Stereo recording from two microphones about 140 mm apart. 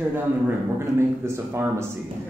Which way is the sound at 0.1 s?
15° right (ahead or behind).